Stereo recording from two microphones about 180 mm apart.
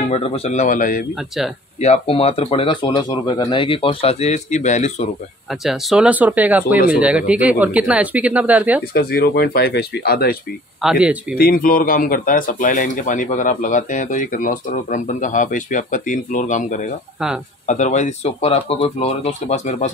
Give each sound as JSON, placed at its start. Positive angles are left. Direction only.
{"t": 0.1, "sound": "speech", "side_deg": 35}
{"t": 1.8, "sound": "speech", "side_deg": 35}
{"t": 5.5, "sound": "speech", "side_deg": 0}
{"t": 8.9, "sound": "speech", "side_deg": 55}
{"t": 10.8, "sound": "speech", "side_deg": -5}
{"t": 11.3, "sound": "speech", "side_deg": 55}